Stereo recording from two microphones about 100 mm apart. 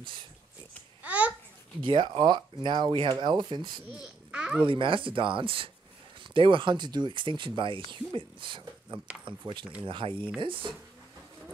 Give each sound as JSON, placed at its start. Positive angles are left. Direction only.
{"t": 1.0, "sound": "babbling", "side_deg": -15}
{"t": 1.9, "sound": "speech", "side_deg": -50}
{"t": 3.9, "sound": "babbling", "side_deg": -10}
{"t": 4.6, "sound": "speech", "side_deg": -60}